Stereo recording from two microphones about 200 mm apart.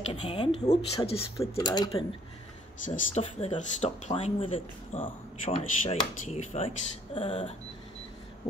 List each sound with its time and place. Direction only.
0.1 s speech: 30° left (ahead or behind)
2.8 s speech: 30° left (ahead or behind)